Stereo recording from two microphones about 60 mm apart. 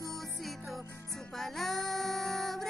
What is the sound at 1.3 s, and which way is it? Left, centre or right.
Child singing, centre.